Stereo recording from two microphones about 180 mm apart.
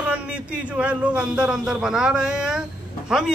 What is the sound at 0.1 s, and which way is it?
A man's voice, 5° right (ahead or behind).